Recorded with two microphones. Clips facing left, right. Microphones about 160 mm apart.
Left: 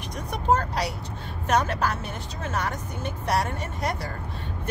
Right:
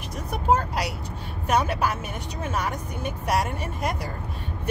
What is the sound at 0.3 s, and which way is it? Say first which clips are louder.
Speech: right 1 dB; 5° right (ahead or behind).